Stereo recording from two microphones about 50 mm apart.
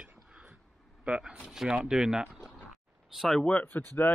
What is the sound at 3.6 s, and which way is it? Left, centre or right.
Speech, left.